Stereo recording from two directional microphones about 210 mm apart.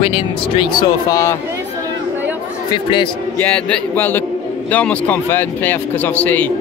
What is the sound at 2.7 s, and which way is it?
Speech, 25° left (ahead or behind).